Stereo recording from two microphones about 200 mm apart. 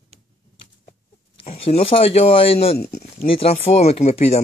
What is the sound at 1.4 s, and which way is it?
Speech, 30° left (ahead or behind).